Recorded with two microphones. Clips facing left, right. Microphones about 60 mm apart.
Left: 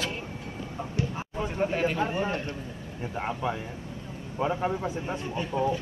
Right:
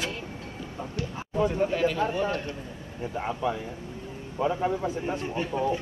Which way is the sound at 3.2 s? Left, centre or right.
Left.